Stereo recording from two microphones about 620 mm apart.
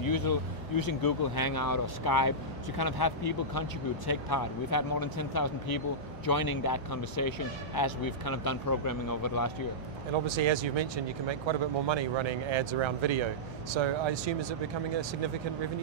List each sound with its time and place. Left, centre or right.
0.1 s speech: left
10.2 s speech: right